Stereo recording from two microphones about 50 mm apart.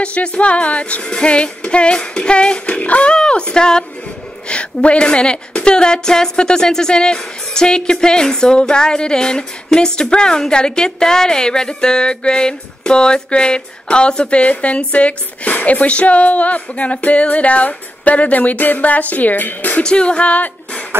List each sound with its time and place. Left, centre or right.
0.0 s a woman's voice: left
19.8 s a woman's voice: centre